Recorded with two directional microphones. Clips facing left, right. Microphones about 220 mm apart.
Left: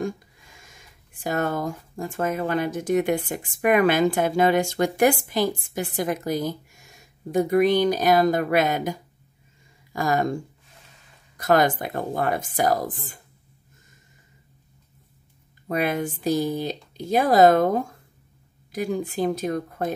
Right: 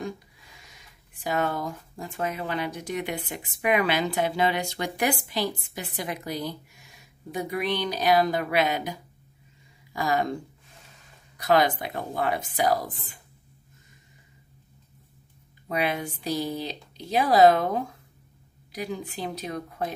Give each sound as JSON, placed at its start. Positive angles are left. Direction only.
{"t": 0.6, "sound": "speech", "side_deg": 50}
{"t": 9.9, "sound": "speech", "side_deg": 45}
{"t": 15.7, "sound": "speech", "side_deg": 50}